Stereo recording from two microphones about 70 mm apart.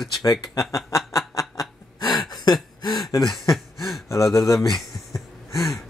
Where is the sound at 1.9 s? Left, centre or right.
Left.